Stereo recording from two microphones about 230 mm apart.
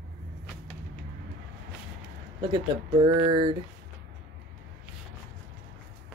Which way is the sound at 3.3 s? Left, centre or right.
Right.